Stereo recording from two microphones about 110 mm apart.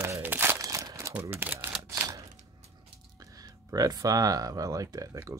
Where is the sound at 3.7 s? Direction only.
35° right (ahead or behind).